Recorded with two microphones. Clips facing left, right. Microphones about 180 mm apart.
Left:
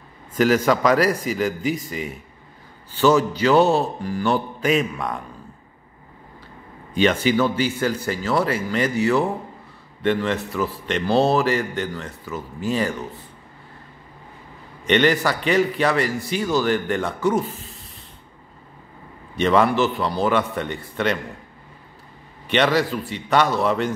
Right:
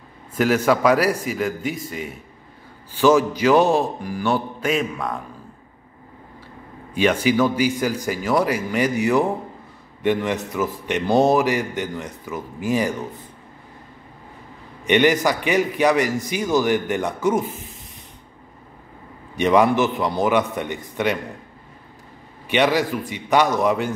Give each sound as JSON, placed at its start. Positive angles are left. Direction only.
{"t": 0.4, "sound": "a man's voice", "side_deg": -5}
{"t": 6.9, "sound": "a man's voice", "side_deg": -10}
{"t": 14.9, "sound": "a man's voice", "side_deg": -15}
{"t": 19.3, "sound": "a man's voice", "side_deg": -15}
{"t": 22.5, "sound": "a man's voice", "side_deg": -10}